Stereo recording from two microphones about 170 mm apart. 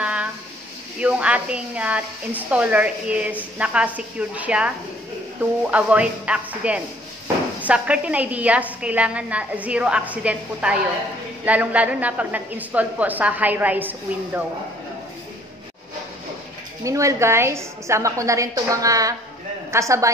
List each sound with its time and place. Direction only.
0.0 s a sound: 5° right (ahead or behind)
1.0 s a woman's voice: 5° right (ahead or behind)
16.8 s a woman's voice: 20° right (ahead or behind)